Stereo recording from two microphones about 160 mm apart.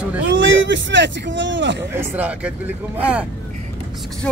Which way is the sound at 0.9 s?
90° right.